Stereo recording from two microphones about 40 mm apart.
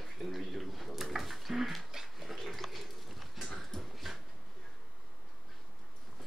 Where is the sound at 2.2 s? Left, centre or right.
Centre.